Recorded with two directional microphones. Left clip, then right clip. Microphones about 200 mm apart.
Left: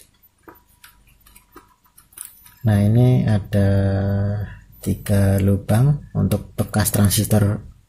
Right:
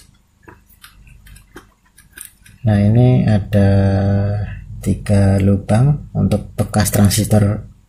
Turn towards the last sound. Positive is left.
turn(degrees=15)  # may be behind; listen again after turning